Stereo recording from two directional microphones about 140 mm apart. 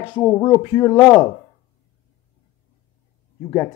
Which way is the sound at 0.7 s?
30° left (ahead or behind).